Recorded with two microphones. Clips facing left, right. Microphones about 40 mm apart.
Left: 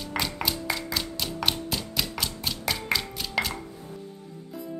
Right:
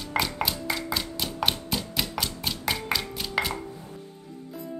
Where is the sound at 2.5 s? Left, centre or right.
Centre.